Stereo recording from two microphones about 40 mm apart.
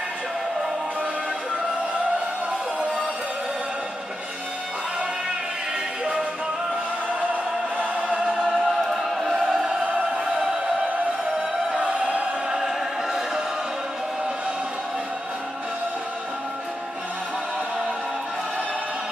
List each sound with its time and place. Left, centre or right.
7.7 s music: right
8.5 s music: centre
9.8 s music: right
10.4 s music: centre
11.7 s choir: right
12.5 s choir: centre